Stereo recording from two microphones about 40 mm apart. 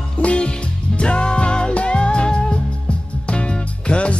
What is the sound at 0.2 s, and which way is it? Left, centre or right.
Music, left.